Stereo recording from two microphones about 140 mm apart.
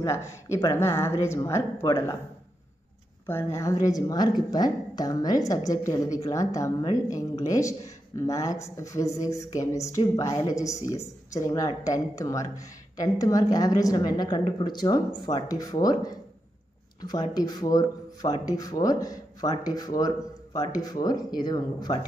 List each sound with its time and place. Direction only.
0.0 s speech: 20° left (ahead or behind)
3.3 s speech: 20° left (ahead or behind)